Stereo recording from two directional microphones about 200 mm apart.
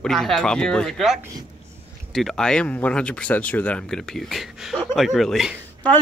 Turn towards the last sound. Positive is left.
turn(degrees=5)  # may be behind; listen again after turning